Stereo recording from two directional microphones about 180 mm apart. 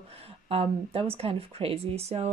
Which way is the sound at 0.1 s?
30° right (ahead or behind).